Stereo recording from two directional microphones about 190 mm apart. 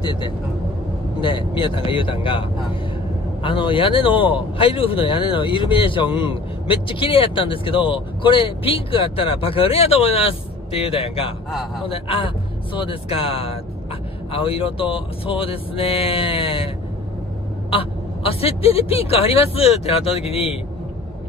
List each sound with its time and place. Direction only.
0.0 s speech: 25° left (ahead or behind)